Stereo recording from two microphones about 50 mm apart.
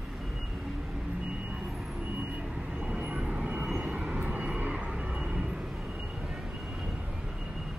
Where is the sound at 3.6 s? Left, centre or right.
Centre.